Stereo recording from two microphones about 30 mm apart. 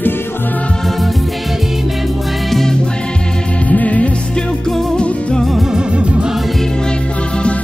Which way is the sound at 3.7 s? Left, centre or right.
Left.